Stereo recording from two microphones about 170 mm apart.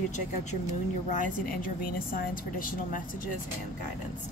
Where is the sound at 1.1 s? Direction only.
50° left (ahead or behind).